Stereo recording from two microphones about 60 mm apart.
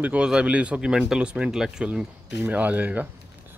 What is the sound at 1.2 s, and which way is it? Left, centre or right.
Speech, centre.